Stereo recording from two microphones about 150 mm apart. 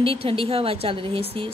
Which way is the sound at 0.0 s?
40° right (ahead or behind).